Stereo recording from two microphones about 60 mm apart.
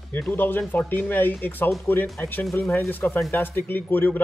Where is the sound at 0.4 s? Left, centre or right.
Left.